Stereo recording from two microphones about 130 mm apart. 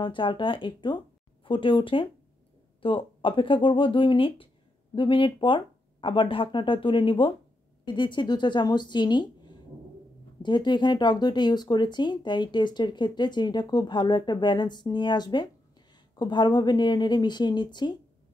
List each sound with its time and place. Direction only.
0.0 s speech: 40° left (ahead or behind)